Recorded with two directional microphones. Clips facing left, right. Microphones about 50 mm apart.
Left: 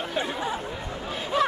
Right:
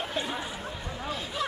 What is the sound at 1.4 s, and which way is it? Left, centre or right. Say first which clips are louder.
Music: left 9 dB; left.